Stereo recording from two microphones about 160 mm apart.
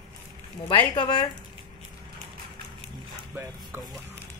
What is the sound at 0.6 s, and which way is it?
Speech, 30° left (ahead or behind).